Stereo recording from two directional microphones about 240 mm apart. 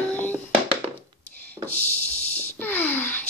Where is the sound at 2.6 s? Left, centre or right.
Centre.